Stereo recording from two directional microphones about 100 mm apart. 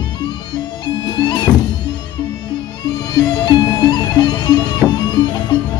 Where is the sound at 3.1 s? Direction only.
45° left (ahead or behind).